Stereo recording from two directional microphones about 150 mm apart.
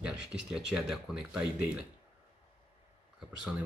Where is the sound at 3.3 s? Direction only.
5° right (ahead or behind).